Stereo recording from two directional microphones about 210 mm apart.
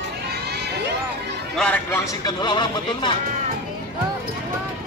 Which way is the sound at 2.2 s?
20° left (ahead or behind).